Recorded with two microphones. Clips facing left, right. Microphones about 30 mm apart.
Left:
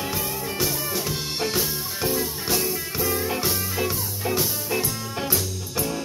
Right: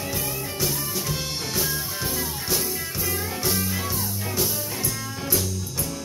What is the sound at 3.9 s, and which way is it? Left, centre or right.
Music, left.